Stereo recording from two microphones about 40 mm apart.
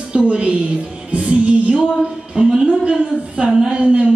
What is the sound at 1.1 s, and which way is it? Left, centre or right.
Music, right.